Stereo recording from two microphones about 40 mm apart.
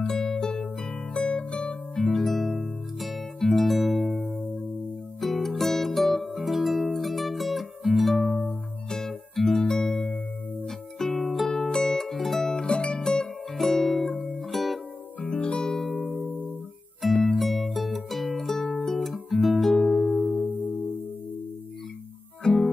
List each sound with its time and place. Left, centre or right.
0.0 s music: centre
2.0 s music: centre
11.0 s music: centre
11.5 s music: centre
12.6 s music: left; by 14.8 s centre
15.2 s music: left
17.2 s music: centre
19.3 s guitar: centre
19.8 s music: left
22.4 s music: centre